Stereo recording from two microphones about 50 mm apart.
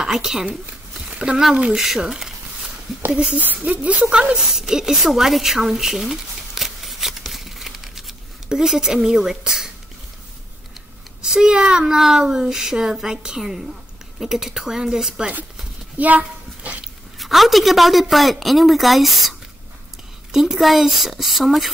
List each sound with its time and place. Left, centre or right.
0.0 s speech: centre
1.8 s a sound: centre
3.1 s speech: centre
3.6 s a woman's voice: right
4.6 s a sound: centre
8.5 s speech: centre
11.2 s speech: centre
16.0 s a sound: right
17.2 s a woman's voice: centre
20.3 s a woman's voice: centre